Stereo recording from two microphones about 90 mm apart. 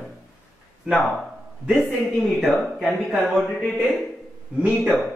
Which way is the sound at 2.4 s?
5° right (ahead or behind).